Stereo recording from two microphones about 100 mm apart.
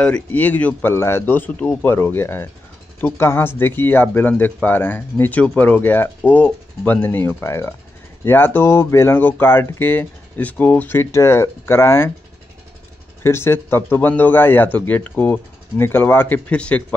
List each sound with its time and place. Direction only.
0.0 s speech: 15° left (ahead or behind)
0.9 s speech: 25° left (ahead or behind)
13.2 s speech: 25° left (ahead or behind)